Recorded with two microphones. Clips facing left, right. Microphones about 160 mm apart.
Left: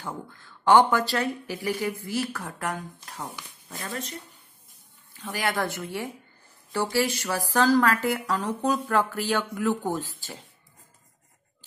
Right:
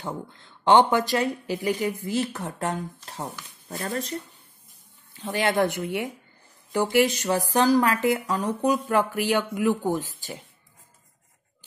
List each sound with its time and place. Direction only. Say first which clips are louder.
0.0 s speech: right 3 dB; 20° right (ahead or behind)
3.6 s speech: right 5 dB; 45° right (ahead or behind)
5.1 s speech: right 5 dB; 25° right (ahead or behind)